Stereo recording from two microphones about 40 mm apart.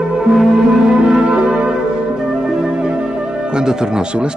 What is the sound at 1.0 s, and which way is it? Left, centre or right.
Church bell, right.